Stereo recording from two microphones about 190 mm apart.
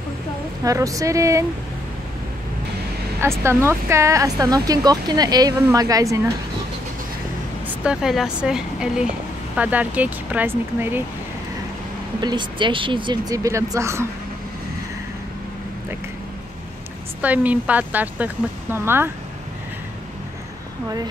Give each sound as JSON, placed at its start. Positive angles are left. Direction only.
{"t": 0.7, "sound": "speech", "side_deg": -15}
{"t": 3.2, "sound": "speech", "side_deg": -15}
{"t": 7.6, "sound": "speech", "side_deg": -5}
{"t": 12.2, "sound": "speech", "side_deg": -25}
{"t": 17.2, "sound": "speech", "side_deg": -10}